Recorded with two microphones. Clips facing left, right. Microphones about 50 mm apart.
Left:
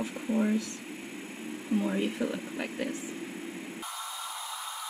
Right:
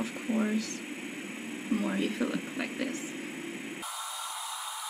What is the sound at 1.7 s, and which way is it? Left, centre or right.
Speech, right.